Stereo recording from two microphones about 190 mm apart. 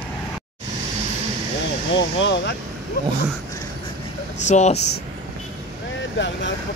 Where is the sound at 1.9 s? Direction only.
70° left (ahead or behind).